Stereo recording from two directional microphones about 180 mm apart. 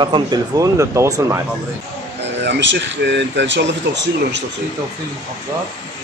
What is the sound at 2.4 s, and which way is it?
Speech, 75° right (ahead or behind).